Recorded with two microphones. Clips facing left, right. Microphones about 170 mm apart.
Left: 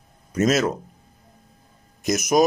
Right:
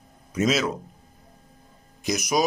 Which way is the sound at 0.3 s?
45° left (ahead or behind).